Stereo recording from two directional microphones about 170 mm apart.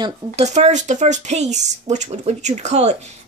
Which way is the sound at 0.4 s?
40° right (ahead or behind).